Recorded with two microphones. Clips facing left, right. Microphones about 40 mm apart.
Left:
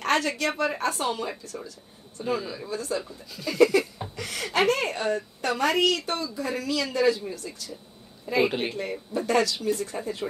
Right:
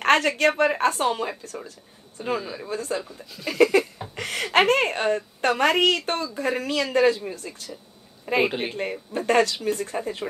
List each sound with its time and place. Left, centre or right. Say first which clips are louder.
0.0 s a woman's voice: right 6 dB; right
8.5 s a woman's voice: even; centre
9.1 s speech: right 3 dB; right